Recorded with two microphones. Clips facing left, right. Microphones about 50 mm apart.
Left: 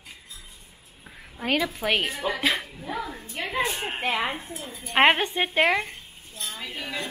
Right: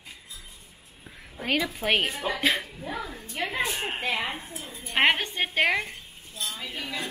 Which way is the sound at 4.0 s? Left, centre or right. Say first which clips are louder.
Left 5 dB; left.